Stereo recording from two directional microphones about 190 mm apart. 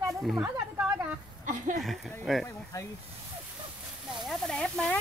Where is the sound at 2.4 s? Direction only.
15° left (ahead or behind).